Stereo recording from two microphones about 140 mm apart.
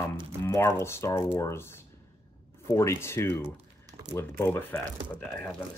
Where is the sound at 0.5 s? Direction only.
20° left (ahead or behind).